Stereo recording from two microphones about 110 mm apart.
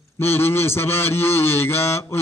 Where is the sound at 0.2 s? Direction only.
20° left (ahead or behind).